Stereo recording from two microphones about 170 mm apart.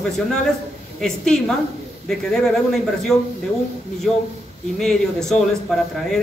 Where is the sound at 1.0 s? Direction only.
5° left (ahead or behind).